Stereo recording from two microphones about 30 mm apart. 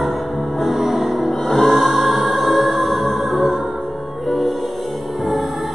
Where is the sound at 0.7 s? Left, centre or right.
Centre.